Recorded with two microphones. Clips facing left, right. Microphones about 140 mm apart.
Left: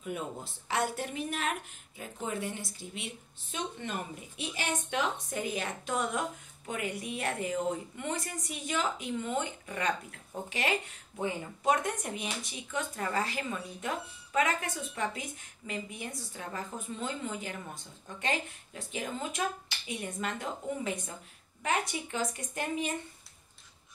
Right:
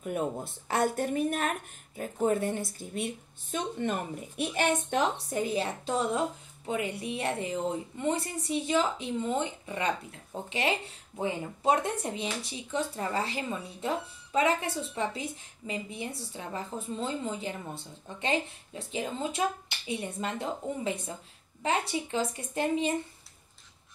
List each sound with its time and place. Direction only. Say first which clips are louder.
0.0 s a woman's voice: right 6 dB; 50° right (ahead or behind)
4.4 s a woman's voice: right 8 dB; 60° right (ahead or behind)
4.8 s speech: right 4 dB; 35° right (ahead or behind)